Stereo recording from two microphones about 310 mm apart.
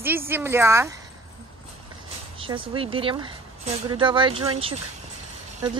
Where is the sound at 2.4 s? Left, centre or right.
Centre.